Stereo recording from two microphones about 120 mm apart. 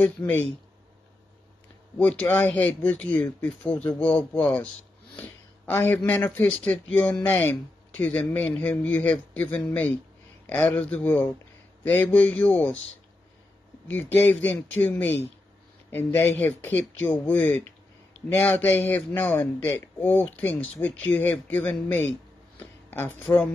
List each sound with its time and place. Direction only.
0.0 s speech: 15° left (ahead or behind)
2.0 s speech: 10° left (ahead or behind)
13.9 s speech: 15° left (ahead or behind)